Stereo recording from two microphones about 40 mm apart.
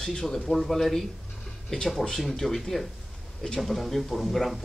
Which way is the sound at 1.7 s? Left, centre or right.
Centre.